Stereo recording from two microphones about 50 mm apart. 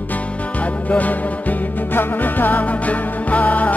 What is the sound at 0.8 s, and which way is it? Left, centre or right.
Music, left.